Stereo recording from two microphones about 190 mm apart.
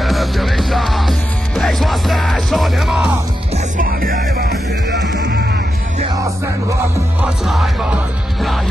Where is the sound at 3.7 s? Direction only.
50° right (ahead or behind).